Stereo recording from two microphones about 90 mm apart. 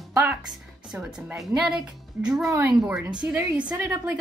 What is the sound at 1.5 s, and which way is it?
Speech, 5° right (ahead or behind).